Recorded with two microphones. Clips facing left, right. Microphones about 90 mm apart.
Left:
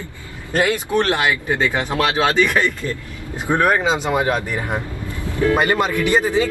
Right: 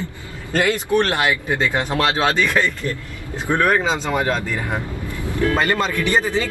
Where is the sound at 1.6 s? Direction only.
20° left (ahead or behind).